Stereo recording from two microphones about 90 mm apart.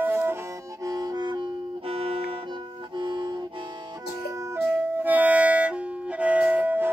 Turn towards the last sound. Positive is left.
turn(degrees=-20)  # may be behind; listen again after turning